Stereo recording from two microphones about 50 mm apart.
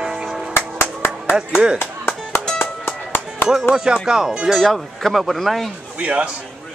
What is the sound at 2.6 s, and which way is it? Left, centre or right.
Music, left.